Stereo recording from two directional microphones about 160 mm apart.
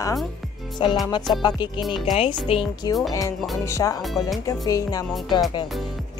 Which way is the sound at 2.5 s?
35° left (ahead or behind).